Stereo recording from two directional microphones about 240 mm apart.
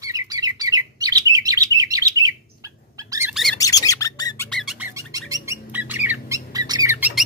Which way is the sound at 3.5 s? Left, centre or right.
Centre.